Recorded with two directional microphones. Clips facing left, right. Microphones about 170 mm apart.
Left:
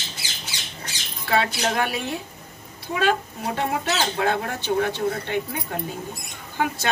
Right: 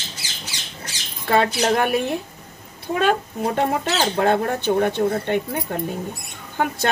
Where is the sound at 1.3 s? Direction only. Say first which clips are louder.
Right 5 dB; 50° right (ahead or behind).